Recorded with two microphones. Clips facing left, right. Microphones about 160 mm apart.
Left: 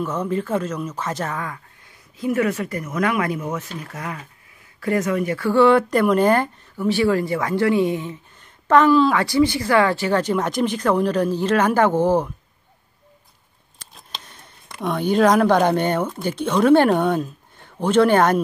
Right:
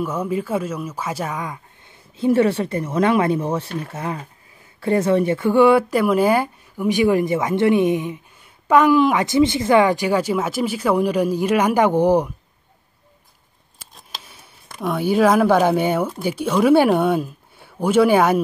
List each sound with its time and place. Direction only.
0.0 s speech: 10° right (ahead or behind)
2.1 s speech: 30° right (ahead or behind); by 12.3 s 15° right (ahead or behind)
13.7 s speech: 5° right (ahead or behind)